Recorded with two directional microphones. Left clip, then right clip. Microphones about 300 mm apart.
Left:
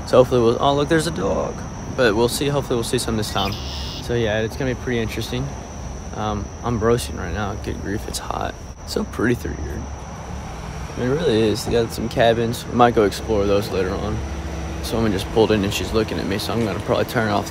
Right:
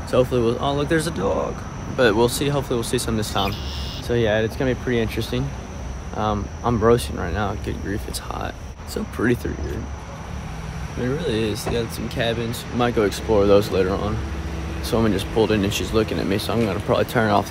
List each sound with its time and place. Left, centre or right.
0.1 s speech: centre
11.0 s speech: centre
13.3 s speech: centre